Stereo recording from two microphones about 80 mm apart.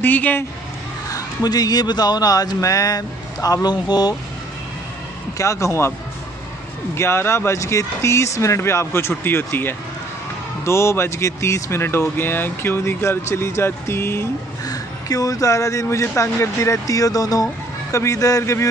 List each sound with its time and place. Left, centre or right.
0.0 s speech: left
1.0 s a man's voice: left
5.4 s speech: left
7.0 s speech: left
14.7 s speech: left